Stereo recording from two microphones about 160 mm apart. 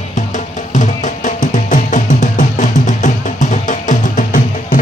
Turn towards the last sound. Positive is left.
turn(degrees=55)  # may be behind; listen again after turning